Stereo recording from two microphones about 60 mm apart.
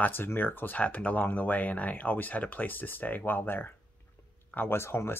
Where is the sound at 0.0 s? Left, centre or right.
Left.